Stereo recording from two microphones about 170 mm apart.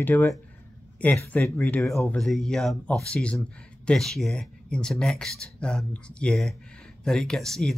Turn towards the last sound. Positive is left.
turn(degrees=0)  # may be behind; listen again after turning